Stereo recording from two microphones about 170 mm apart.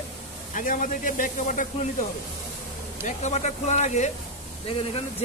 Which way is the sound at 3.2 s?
45° left (ahead or behind).